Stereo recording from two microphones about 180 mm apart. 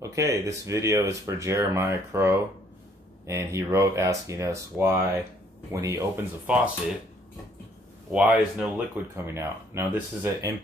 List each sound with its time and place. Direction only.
0.0 s speech: 15° right (ahead or behind)
8.1 s speech: 5° right (ahead or behind)